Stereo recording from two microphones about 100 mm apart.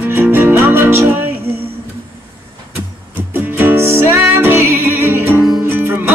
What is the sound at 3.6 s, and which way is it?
Music, 25° right (ahead or behind).